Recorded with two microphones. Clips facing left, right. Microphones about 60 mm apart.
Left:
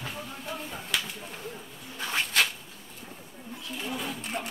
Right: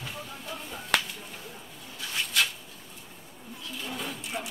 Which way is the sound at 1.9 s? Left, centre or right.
Left.